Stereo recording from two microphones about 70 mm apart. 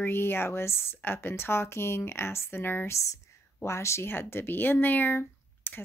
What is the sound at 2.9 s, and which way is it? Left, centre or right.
Speech, left.